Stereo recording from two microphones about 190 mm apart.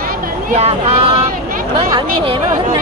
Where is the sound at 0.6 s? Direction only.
30° right (ahead or behind).